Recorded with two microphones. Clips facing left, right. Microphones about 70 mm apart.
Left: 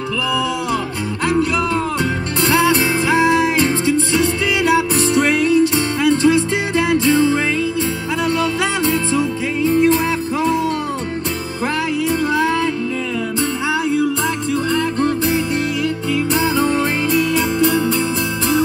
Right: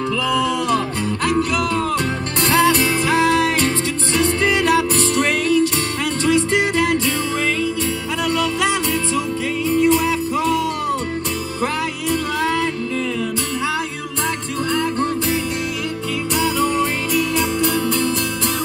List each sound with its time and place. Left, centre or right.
2.7 s music: left
4.1 s music: right
4.6 s music: left
16.3 s music: left